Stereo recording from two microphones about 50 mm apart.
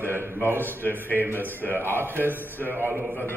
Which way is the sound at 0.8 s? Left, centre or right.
Left.